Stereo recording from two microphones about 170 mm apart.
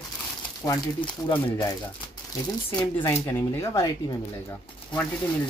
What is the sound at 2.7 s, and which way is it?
Speech, 15° left (ahead or behind).